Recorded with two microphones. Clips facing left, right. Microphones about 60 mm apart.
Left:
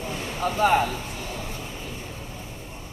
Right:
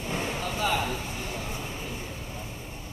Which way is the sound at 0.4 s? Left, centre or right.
Left.